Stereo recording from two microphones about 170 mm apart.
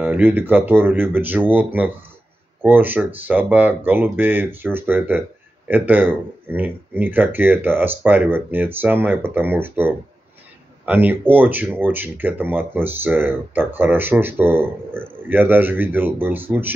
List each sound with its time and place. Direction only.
0.0 s speech: 10° right (ahead or behind)